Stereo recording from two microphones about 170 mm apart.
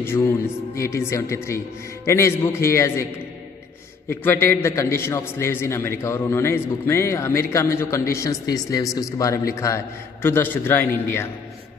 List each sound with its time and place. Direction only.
0.0 s a man's voice: 15° left (ahead or behind)
4.1 s a man's voice: 10° left (ahead or behind)